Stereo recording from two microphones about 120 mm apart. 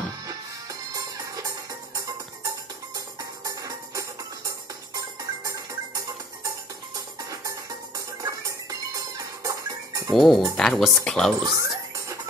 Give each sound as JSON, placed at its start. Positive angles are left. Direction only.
{"t": 0.2, "sound": "music", "side_deg": -30}
{"t": 10.1, "sound": "speech", "side_deg": 0}
{"t": 11.4, "sound": "a sound", "side_deg": -30}